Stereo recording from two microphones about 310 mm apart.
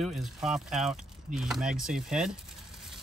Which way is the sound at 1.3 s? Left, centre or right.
Centre.